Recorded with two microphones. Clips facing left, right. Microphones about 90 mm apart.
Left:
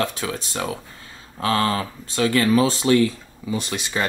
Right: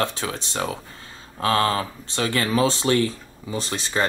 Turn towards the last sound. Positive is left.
turn(degrees=-30)  # may be behind; listen again after turning